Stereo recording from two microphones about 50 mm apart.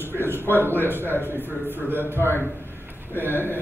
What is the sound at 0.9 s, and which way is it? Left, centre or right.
Speech, right.